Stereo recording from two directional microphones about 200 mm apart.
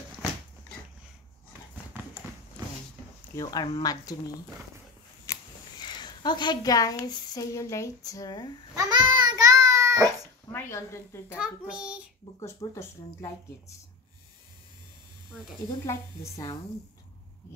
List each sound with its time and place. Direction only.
2.0 s clip-clop: 10° right (ahead or behind)
3.3 s speech: 20° left (ahead or behind)
5.2 s speech: 20° left (ahead or behind)
8.7 s child singing: 20° right (ahead or behind)
10.0 s dog: 10° left (ahead or behind)
11.3 s a child's voice: 5° right (ahead or behind)
12.4 s speech: 15° left (ahead or behind)
15.8 s speech: 15° left (ahead or behind)